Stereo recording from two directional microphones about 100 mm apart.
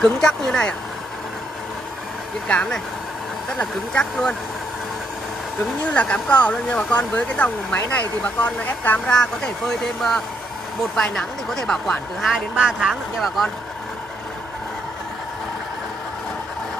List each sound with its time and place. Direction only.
0.0 s speech: 5° left (ahead or behind)
2.4 s speech: 10° left (ahead or behind)
5.9 s speech: 10° left (ahead or behind)
9.2 s speech: 5° left (ahead or behind)